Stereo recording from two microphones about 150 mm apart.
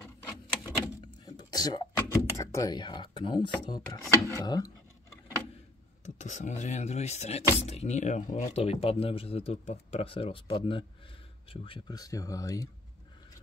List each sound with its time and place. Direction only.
0.7 s vehicle: 25° left (ahead or behind)
2.0 s speech: 20° left (ahead or behind)
4.2 s a sound: 25° left (ahead or behind)
6.0 s speech: 55° left (ahead or behind); by 12.0 s 35° left (ahead or behind)
12.0 s speech: 20° left (ahead or behind)